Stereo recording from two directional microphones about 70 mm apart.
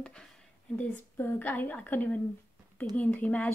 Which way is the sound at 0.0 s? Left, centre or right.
Centre.